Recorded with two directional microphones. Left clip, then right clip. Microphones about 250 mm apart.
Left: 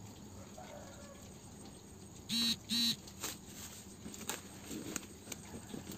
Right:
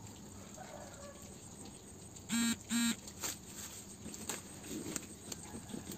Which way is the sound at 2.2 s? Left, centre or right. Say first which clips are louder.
Left 3 dB; left.